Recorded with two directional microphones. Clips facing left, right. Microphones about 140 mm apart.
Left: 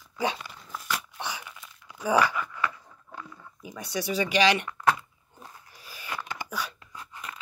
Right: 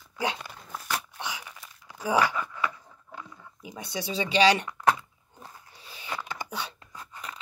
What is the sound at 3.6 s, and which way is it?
Speech, 20° right (ahead or behind).